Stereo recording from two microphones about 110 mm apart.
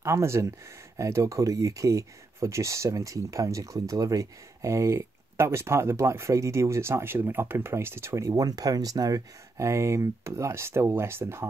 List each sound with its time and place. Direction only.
0.0 s speech: 25° right (ahead or behind)